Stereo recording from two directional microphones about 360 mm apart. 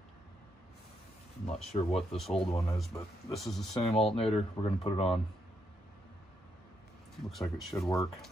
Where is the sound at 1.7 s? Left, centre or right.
Centre.